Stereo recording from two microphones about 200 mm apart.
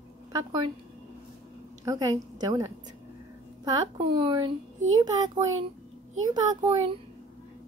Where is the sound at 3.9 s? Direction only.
25° right (ahead or behind).